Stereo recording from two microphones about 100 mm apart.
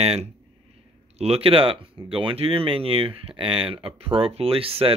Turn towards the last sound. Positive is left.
turn(degrees=-70)  # may be behind; listen again after turning